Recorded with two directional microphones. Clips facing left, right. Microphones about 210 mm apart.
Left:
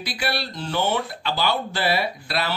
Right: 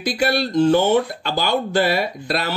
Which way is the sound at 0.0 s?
45° right (ahead or behind).